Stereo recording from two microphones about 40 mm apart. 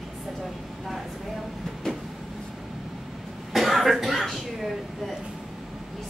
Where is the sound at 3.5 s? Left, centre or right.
Centre.